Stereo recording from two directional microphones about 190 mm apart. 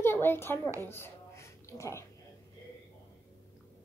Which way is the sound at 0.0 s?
10° left (ahead or behind).